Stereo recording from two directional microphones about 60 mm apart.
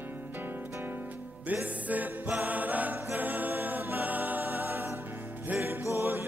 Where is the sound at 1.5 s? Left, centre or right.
Right.